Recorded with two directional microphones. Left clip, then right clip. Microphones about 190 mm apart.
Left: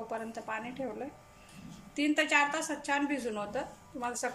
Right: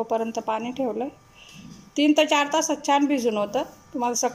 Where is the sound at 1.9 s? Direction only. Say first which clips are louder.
Right 8 dB; 30° right (ahead or behind).